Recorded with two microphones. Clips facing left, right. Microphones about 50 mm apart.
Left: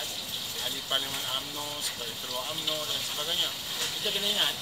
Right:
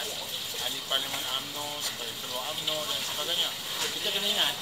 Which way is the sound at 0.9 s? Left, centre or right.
Centre.